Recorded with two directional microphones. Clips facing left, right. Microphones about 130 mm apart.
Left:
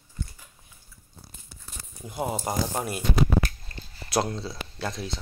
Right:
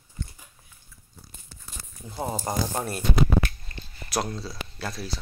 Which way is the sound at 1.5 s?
15° left (ahead or behind).